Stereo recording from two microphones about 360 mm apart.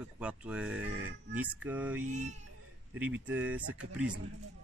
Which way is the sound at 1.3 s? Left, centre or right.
Centre.